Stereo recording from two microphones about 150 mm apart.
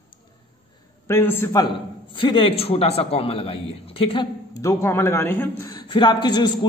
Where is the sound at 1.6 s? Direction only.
35° left (ahead or behind).